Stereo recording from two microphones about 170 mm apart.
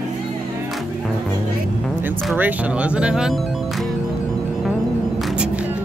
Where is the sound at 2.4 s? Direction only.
10° right (ahead or behind).